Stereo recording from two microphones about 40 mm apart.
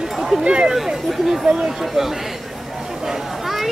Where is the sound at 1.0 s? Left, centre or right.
Centre.